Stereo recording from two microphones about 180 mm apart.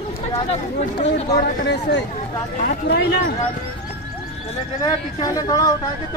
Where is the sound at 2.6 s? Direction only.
65° left (ahead or behind).